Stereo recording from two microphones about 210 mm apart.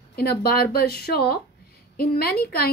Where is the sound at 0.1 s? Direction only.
45° left (ahead or behind).